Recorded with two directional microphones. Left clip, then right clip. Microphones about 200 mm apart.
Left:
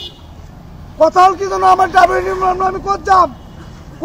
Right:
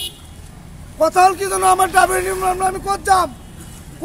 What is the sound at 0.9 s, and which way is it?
Speech, 20° right (ahead or behind).